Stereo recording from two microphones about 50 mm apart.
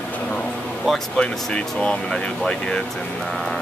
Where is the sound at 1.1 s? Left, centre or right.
Left.